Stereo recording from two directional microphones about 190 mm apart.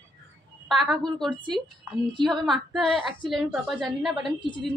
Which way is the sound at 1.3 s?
25° right (ahead or behind).